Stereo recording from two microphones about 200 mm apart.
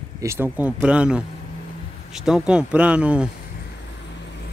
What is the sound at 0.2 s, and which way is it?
Speech, 10° right (ahead or behind).